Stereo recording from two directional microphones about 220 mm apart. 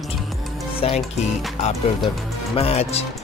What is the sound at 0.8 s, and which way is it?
Speech, 25° left (ahead or behind).